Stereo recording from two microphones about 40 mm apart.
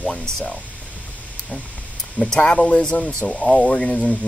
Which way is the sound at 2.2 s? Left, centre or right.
Left.